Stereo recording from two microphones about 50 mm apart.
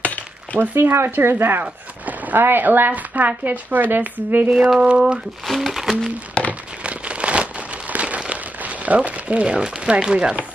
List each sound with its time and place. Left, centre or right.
0.0 s cutlery: left
0.6 s a woman's voice: right
1.6 s a sound: right
2.4 s a woman's voice: right
4.7 s speech: centre
5.5 s speech: centre
6.4 s a sound: left
6.8 s crumpling: right
7.9 s a sound: right
8.2 s speech: right